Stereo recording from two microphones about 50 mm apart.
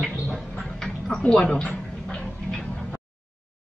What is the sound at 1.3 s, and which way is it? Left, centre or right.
Speech, centre.